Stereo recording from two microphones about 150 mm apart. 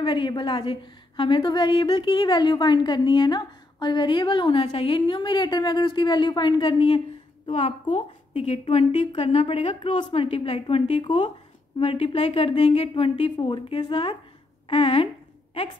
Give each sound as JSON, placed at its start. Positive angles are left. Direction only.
{"t": 0.0, "sound": "a woman's voice", "side_deg": 35}
{"t": 8.4, "sound": "a woman's voice", "side_deg": 45}